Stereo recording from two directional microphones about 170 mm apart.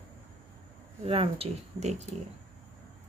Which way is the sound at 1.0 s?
35° right (ahead or behind).